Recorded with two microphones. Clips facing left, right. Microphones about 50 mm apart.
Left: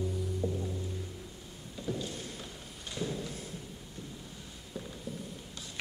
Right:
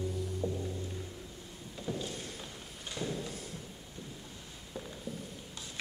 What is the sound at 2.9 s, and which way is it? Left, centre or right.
Clip-clop, centre.